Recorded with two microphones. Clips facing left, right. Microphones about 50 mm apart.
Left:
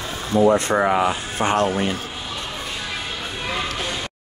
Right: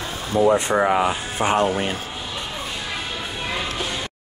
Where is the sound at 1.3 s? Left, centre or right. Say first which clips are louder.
Right 1 dB; centre.